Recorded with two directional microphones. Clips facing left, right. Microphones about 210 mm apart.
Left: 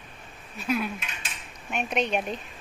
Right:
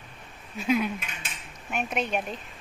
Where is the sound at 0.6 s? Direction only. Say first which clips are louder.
Right 3 dB; 20° right (ahead or behind).